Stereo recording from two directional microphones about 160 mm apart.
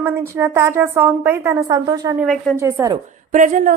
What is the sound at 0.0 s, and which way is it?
A woman's voice, 15° right (ahead or behind).